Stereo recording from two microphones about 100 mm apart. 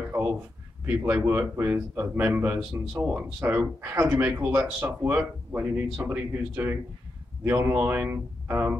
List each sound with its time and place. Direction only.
0.8 s speech: 20° right (ahead or behind)